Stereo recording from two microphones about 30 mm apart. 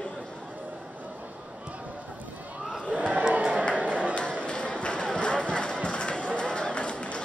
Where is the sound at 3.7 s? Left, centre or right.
Right.